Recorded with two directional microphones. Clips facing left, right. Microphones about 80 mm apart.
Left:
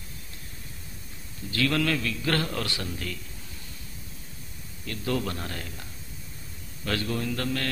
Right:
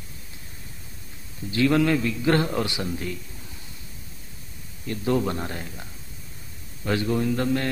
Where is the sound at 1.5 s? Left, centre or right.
Right.